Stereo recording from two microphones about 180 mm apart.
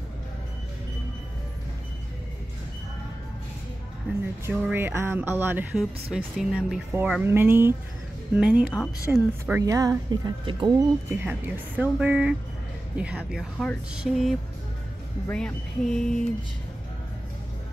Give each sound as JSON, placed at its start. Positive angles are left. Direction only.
{"t": 4.5, "sound": "speech", "side_deg": -10}
{"t": 9.6, "sound": "speech", "side_deg": -20}
{"t": 11.1, "sound": "speech", "side_deg": -10}